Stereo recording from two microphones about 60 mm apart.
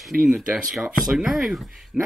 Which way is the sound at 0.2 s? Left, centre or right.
Right.